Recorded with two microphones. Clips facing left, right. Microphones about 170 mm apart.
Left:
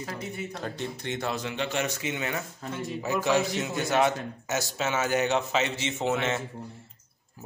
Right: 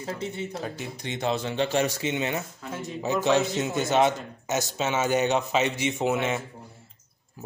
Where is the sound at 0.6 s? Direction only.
5° right (ahead or behind).